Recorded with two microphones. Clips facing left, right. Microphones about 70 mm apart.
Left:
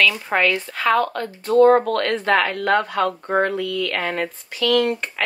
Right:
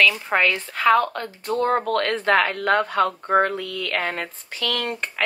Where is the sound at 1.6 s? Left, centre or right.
Left.